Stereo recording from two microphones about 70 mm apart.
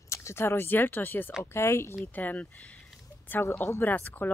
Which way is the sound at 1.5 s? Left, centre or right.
Left.